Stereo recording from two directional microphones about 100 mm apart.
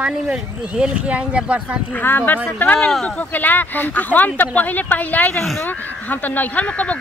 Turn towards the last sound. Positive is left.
turn(degrees=15)  # may be behind; listen again after turning